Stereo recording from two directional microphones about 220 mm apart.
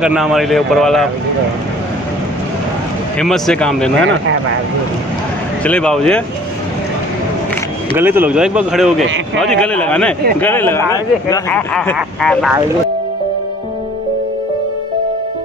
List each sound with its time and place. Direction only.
0.0 s speech: 5° right (ahead or behind)
3.2 s speech: 5° left (ahead or behind)
3.9 s speech: 60° right (ahead or behind)
5.6 s speech: 5° left (ahead or behind)
7.9 s speech: 10° right (ahead or behind)